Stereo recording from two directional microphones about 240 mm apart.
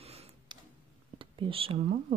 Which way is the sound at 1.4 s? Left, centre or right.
Right.